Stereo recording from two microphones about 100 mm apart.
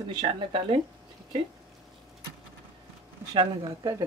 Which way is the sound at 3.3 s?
60° right (ahead or behind).